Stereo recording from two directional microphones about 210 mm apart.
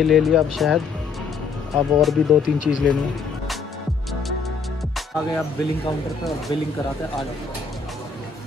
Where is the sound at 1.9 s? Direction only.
Centre (ahead or behind).